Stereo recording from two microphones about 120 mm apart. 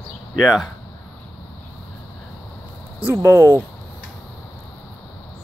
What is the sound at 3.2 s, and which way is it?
Speech, 20° right (ahead or behind).